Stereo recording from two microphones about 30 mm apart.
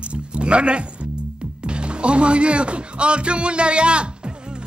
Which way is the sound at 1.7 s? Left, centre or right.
Right.